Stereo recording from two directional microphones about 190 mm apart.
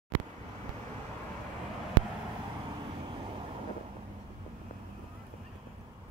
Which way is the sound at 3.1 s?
30° right (ahead or behind).